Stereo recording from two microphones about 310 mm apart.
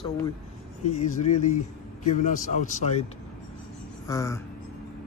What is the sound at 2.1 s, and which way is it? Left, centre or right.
Speech, left.